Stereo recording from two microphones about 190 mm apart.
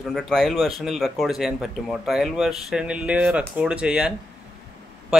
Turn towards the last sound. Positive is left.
turn(degrees=-5)  # may be behind; listen again after turning